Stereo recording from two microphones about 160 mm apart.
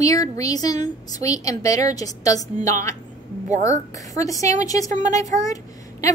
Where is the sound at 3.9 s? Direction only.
20° left (ahead or behind).